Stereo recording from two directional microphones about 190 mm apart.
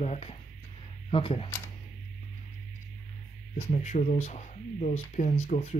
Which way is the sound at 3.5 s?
35° left (ahead or behind).